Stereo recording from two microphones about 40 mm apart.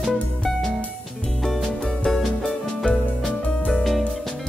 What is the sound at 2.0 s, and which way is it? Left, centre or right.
Music, centre.